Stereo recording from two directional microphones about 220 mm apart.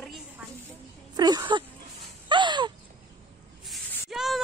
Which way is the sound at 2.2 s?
20° right (ahead or behind).